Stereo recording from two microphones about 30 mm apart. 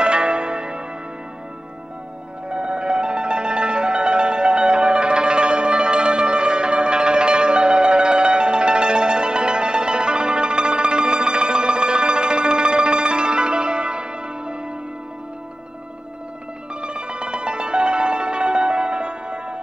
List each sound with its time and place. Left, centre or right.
0.0 s church bell: right
2.5 s music: right
16.8 s music: right